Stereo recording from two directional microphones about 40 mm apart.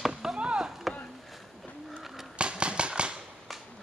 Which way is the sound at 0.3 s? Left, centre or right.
Right.